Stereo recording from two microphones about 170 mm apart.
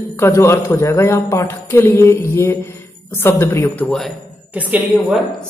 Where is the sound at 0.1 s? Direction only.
15° left (ahead or behind).